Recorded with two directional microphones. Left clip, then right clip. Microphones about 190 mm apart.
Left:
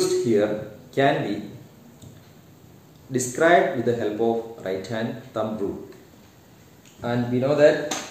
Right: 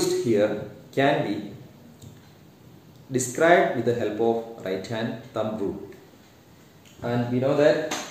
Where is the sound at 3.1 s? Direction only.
10° left (ahead or behind).